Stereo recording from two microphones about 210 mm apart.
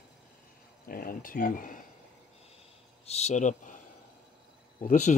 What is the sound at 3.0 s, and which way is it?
Speech, 30° left (ahead or behind).